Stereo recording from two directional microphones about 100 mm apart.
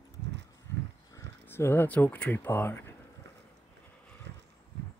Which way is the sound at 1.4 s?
25° left (ahead or behind).